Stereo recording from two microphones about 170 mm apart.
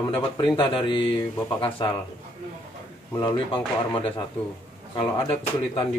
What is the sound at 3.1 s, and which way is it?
Speech, 25° left (ahead or behind).